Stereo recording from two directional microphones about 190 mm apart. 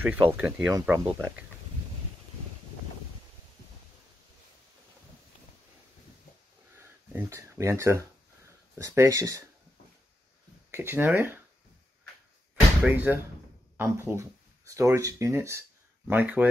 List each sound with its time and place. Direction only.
0.0 s speech: 10° right (ahead or behind)
6.8 s a sound: 10° right (ahead or behind)
8.7 s speech: 15° right (ahead or behind)
10.7 s speech: 10° right (ahead or behind)
12.8 s speech: 10° right (ahead or behind)